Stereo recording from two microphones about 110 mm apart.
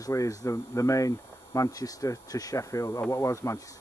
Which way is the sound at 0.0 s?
30° left (ahead or behind).